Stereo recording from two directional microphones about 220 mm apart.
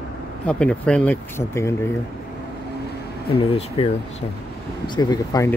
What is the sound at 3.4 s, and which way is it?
Speech, 30° left (ahead or behind).